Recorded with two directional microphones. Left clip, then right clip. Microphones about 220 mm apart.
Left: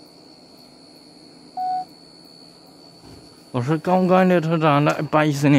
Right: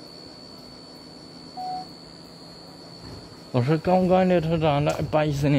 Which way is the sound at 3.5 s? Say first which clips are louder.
Left 1 dB; 15° left (ahead or behind).